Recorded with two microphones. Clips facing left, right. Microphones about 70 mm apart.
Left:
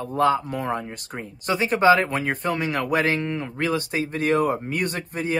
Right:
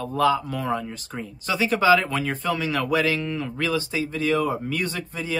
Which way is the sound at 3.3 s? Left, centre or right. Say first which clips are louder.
Left 1 dB; left.